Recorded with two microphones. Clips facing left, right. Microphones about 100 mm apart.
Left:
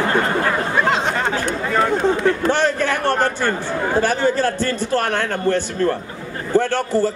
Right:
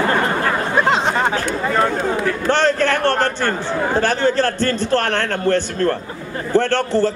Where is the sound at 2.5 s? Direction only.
10° left (ahead or behind).